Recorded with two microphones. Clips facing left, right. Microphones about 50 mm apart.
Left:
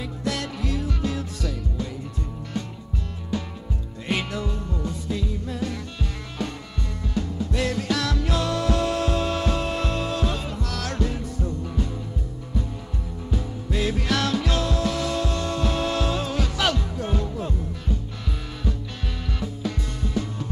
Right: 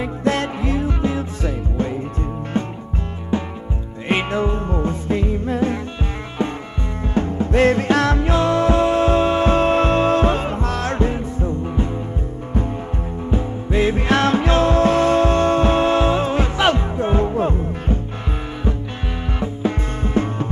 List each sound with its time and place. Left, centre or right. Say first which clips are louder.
0.0 s music: right 9 dB; right
4.1 s music: right 8 dB; right
7.2 s music: right 10 dB; right
13.3 s music: right 7 dB; right
19.4 s music: right 8 dB; right